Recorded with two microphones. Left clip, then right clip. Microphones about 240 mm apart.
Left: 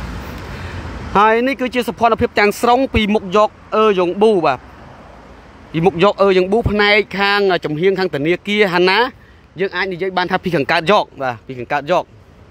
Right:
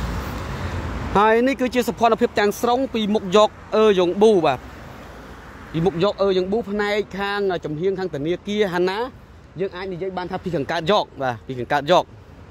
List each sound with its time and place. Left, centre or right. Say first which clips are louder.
1.1 s speech: left 4 dB; centre
3.3 s speech: left 2 dB; centre
5.7 s speech: left 7 dB; centre